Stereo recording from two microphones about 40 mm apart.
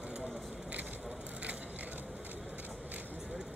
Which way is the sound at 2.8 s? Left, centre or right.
Right.